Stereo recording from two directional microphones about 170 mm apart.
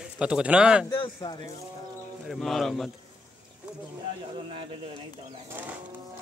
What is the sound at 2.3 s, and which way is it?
Speech, centre (ahead or behind).